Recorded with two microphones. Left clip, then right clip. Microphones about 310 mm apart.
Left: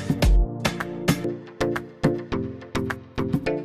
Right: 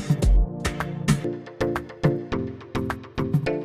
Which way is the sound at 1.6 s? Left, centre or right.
Centre.